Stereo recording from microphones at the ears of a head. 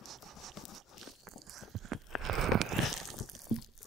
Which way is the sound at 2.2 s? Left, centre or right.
Right.